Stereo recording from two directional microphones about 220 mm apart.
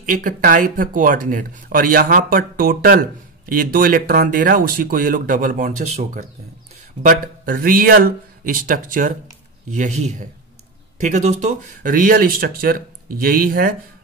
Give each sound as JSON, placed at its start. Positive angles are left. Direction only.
{"t": 0.0, "sound": "speech", "side_deg": -40}
{"t": 11.0, "sound": "speech", "side_deg": -35}